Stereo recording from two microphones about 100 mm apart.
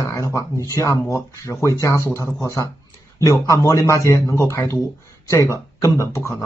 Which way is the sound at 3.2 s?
35° left (ahead or behind).